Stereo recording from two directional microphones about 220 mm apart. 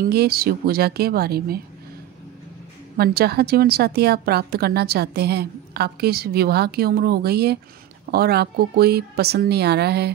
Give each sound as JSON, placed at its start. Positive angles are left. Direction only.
{"t": 0.0, "sound": "a woman's voice", "side_deg": -45}
{"t": 3.0, "sound": "a woman's voice", "side_deg": -45}